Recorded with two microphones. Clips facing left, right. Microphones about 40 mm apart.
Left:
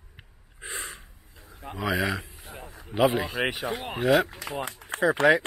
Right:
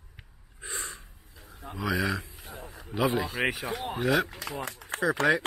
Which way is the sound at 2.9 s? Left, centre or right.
Left.